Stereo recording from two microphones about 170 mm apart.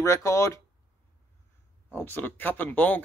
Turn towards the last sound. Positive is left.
turn(degrees=10)  # may be behind; listen again after turning